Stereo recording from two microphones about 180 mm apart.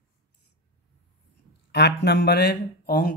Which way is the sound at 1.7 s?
70° left (ahead or behind).